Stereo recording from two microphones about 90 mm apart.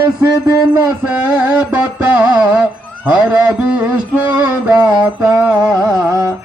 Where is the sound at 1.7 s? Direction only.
15° right (ahead or behind).